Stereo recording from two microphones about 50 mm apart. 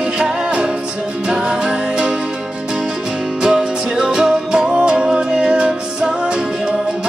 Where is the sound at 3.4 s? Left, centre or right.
Centre.